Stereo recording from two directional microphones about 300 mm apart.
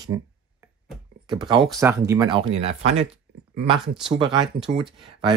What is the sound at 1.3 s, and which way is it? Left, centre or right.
Speech, centre.